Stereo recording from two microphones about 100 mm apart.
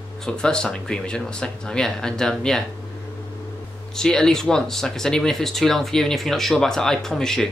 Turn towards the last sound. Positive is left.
turn(degrees=5)  # may be behind; listen again after turning